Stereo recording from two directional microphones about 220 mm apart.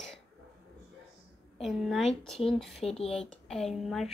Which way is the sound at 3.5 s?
Centre (ahead or behind).